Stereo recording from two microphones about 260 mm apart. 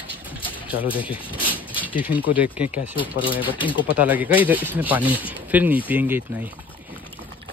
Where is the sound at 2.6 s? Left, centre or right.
Left.